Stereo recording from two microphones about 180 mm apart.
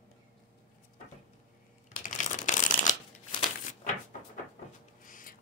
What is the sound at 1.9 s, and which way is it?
Shuffling cards, 45° left (ahead or behind).